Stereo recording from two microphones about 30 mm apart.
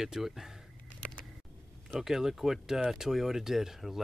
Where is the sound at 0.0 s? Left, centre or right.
Centre.